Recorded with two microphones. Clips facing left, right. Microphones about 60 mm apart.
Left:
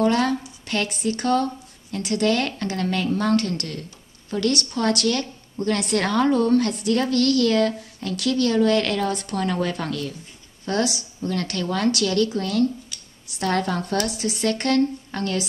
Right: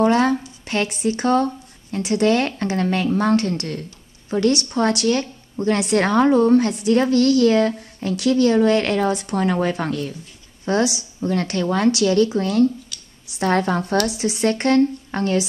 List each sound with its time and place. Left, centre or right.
0.0 s a woman's voice: right